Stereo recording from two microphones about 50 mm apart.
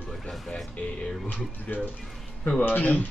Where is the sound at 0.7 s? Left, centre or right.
Left.